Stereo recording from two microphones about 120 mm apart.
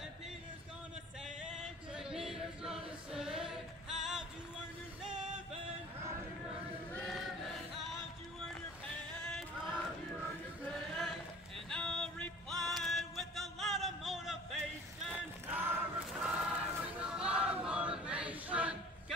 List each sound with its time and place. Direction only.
2.0 s choir: 5° right (ahead or behind)
6.9 s choir: 5° left (ahead or behind)
10.7 s a sound: centre (ahead or behind)
15.1 s music: 15° right (ahead or behind)
16.2 s choir: 5° right (ahead or behind)